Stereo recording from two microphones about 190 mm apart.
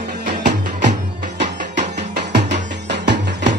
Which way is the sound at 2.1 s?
65° right (ahead or behind).